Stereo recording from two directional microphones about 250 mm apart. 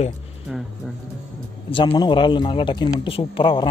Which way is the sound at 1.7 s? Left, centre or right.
Centre.